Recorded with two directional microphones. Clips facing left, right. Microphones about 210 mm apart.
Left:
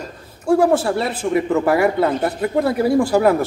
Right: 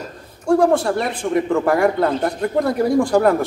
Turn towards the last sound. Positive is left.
turn(degrees=5)  # may be behind; listen again after turning